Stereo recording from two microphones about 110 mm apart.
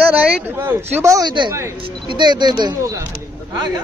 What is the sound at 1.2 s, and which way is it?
Speech, 45° right (ahead or behind).